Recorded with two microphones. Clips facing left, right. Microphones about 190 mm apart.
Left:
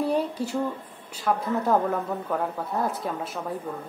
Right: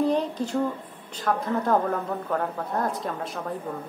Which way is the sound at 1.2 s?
5° left (ahead or behind).